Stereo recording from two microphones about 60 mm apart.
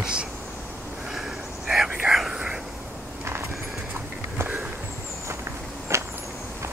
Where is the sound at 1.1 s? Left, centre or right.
Centre.